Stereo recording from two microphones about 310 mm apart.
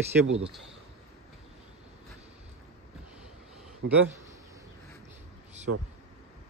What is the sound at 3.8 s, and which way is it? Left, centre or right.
Speech, right.